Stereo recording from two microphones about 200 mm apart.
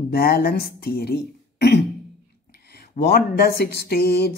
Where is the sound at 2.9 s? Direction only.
50° left (ahead or behind).